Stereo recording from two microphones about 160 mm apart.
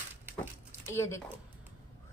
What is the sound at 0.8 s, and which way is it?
Speech, 15° left (ahead or behind).